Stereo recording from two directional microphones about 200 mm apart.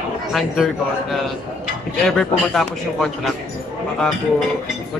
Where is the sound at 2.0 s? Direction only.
5° left (ahead or behind).